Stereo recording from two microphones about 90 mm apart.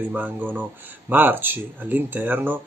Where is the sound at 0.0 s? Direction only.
20° right (ahead or behind).